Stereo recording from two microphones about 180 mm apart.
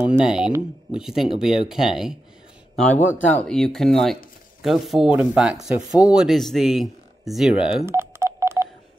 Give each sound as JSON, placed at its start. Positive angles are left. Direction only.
{"t": 0.0, "sound": "speech", "side_deg": -5}
{"t": 3.3, "sound": "speech", "side_deg": 5}
{"t": 7.8, "sound": "telephone dialing", "side_deg": -15}